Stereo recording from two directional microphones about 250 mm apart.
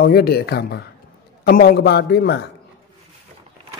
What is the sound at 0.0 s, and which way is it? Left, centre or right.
Speech, left.